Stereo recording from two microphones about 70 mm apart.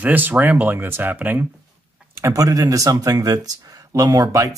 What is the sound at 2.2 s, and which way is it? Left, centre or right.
Speech, right.